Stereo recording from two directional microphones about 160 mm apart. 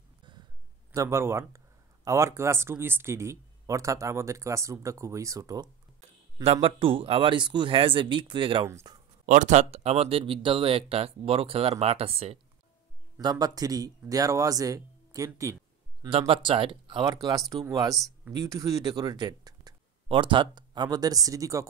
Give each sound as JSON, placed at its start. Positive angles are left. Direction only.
{"t": 0.9, "sound": "speech", "side_deg": -15}
{"t": 6.4, "sound": "speech", "side_deg": -40}
{"t": 8.6, "sound": "speech", "side_deg": -15}
{"t": 9.2, "sound": "speech", "side_deg": -50}
{"t": 13.2, "sound": "speech", "side_deg": -25}
{"t": 16.0, "sound": "speech", "side_deg": -35}